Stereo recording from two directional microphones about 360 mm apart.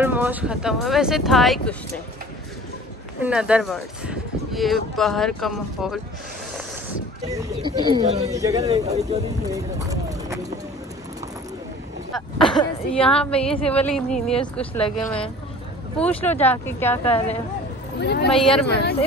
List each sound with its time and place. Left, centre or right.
0.0 s speech: centre
3.2 s speech: centre
7.2 s speech: centre
12.1 s speech: centre
14.3 s speech: centre
16.0 s speech: centre
18.0 s speech: left
18.3 s speech: centre